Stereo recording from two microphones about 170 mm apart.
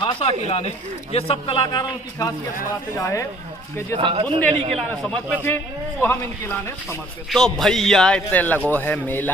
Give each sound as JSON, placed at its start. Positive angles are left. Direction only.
{"t": 0.0, "sound": "a man's voice", "side_deg": 35}
{"t": 3.9, "sound": "a man's voice", "side_deg": -30}
{"t": 4.8, "sound": "a man's voice", "side_deg": 10}
{"t": 7.2, "sound": "a man's voice", "side_deg": 0}